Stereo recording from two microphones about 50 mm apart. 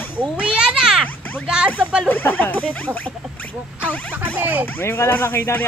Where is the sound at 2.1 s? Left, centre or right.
Left.